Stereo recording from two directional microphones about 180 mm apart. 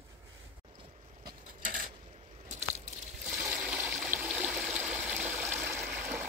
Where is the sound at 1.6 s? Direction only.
50° right (ahead or behind).